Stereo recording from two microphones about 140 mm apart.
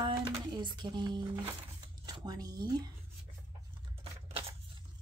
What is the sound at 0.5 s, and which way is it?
Speech, 30° right (ahead or behind).